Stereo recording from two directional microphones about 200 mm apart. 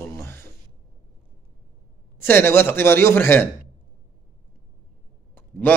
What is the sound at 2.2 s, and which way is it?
A man's voice, 10° left (ahead or behind).